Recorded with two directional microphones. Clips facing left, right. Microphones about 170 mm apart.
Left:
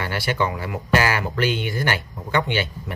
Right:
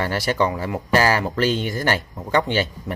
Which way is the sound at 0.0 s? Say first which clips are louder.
Right 3 dB; 40° right (ahead or behind).